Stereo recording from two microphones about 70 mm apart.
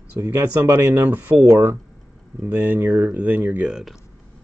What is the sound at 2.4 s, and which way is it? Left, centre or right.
Speech, right.